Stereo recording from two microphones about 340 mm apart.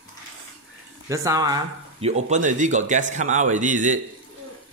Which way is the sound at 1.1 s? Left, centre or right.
Centre.